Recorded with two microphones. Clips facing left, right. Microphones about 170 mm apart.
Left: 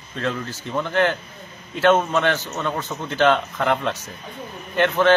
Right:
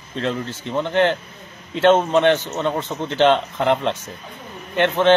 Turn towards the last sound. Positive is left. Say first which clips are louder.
# right 1 dB
turn(degrees=-25)  # may be behind; listen again after turning